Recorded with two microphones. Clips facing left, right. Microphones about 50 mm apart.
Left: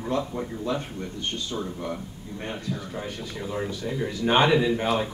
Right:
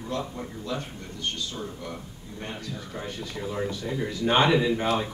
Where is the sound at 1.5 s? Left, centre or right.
Left.